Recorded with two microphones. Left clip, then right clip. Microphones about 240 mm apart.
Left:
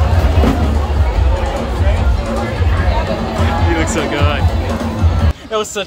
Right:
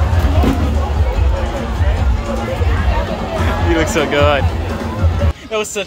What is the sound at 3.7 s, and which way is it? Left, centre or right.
Speech, centre.